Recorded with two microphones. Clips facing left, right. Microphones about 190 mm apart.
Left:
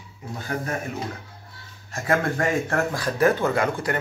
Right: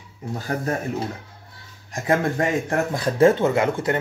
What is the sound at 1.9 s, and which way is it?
Speech, 20° right (ahead or behind).